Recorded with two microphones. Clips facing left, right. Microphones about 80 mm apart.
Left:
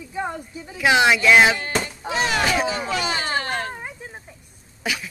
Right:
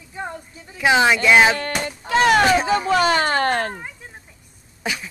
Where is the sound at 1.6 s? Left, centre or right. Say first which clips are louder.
Even; right.